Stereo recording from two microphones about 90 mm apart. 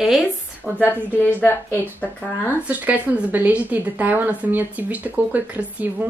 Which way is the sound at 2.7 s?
15° right (ahead or behind).